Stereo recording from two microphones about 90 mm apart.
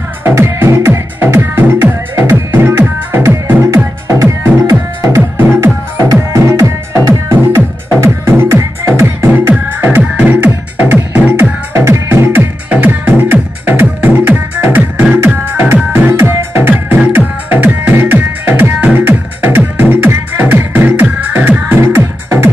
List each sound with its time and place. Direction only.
0.2 s music: 30° right (ahead or behind)
11.7 s music: 30° right (ahead or behind)
12.6 s music: 20° right (ahead or behind)